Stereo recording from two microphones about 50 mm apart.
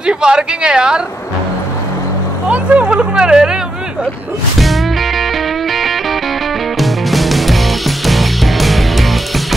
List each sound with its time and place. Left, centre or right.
0.0 s speech: centre
2.5 s a sound: right
4.6 s music: centre